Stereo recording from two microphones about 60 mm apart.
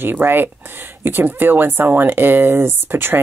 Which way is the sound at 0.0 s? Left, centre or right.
Right.